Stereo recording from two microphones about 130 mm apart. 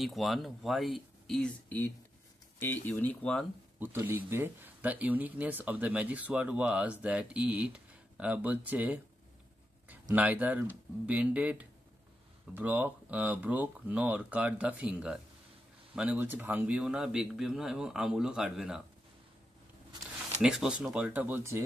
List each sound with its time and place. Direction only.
0.0 s speech: centre (ahead or behind)
3.8 s speech: 15° right (ahead or behind)
10.1 s speech: 10° right (ahead or behind)
20.4 s speech: 5° right (ahead or behind)